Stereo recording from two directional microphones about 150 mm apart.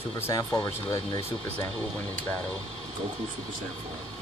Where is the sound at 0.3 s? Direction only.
20° left (ahead or behind).